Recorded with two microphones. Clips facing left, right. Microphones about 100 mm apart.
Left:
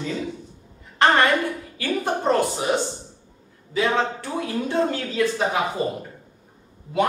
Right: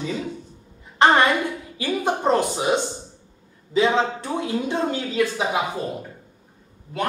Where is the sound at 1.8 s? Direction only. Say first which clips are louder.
Right 1 dB; 20° right (ahead or behind).